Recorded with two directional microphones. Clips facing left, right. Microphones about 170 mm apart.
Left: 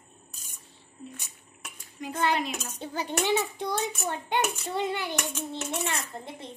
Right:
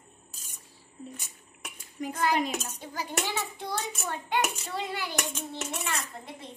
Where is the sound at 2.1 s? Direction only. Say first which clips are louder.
Even; 25° left (ahead or behind).